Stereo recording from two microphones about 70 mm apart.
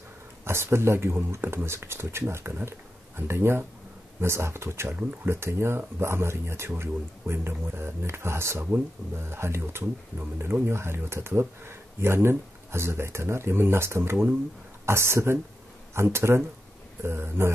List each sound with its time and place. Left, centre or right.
0.5 s speech: right